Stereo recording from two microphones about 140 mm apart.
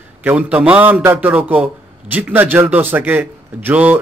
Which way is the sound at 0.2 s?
10° right (ahead or behind).